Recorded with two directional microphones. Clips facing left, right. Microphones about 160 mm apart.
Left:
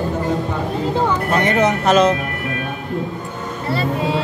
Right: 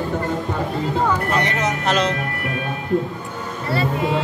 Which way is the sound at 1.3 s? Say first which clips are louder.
Left 5 dB; 50° left (ahead or behind).